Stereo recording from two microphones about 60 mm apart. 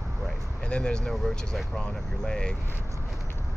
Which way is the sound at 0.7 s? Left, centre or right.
Centre.